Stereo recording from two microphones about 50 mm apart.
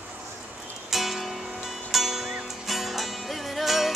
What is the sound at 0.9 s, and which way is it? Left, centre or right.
Music, centre.